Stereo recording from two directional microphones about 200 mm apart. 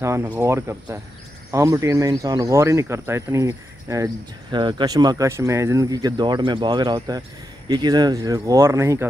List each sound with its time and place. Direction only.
0.0 s speech: 15° right (ahead or behind)